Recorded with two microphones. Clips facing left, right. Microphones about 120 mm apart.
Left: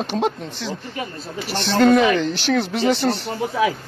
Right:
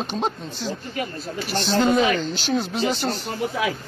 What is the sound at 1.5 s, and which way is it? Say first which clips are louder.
Speech: left 4 dB; 60° left (ahead or behind).